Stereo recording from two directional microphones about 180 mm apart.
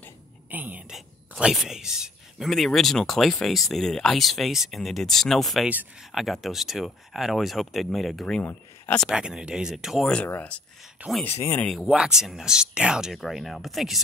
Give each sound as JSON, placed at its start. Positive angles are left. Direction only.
{"t": 0.5, "sound": "speech", "side_deg": -10}
{"t": 11.4, "sound": "speech", "side_deg": 10}
{"t": 11.7, "sound": "speech", "side_deg": 0}